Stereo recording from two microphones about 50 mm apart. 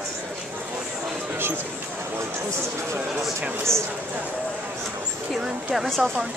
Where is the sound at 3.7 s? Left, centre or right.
Right.